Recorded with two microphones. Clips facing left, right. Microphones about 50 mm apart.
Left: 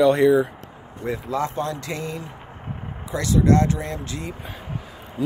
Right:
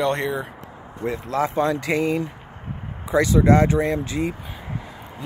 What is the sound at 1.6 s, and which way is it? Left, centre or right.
Speech, right.